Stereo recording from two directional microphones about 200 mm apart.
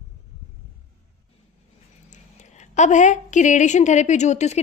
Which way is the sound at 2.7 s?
35° left (ahead or behind).